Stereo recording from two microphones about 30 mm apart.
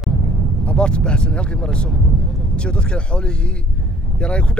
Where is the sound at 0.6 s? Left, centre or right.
Left.